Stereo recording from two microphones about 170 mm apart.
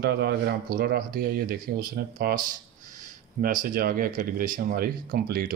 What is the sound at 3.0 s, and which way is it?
Speech, 50° right (ahead or behind).